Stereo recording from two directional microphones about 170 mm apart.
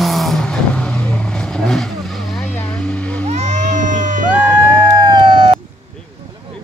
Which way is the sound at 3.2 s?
40° right (ahead or behind).